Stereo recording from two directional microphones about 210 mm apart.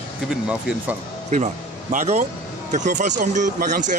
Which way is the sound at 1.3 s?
35° right (ahead or behind).